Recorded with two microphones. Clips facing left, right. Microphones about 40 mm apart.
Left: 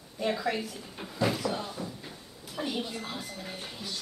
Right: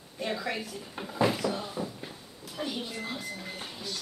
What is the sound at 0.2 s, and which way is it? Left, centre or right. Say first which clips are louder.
Speech: left 3 dB; centre.